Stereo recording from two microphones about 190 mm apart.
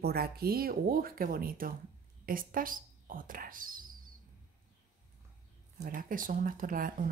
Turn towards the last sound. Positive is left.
turn(degrees=-45)  # may be behind; listen again after turning